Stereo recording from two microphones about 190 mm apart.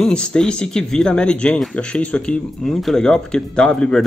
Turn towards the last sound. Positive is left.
turn(degrees=5)  # may be behind; listen again after turning